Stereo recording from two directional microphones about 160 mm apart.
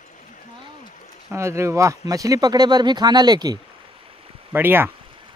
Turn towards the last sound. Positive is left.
turn(degrees=-15)  # may be behind; listen again after turning